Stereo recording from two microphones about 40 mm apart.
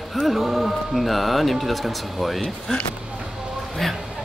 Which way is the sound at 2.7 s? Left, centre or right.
Centre.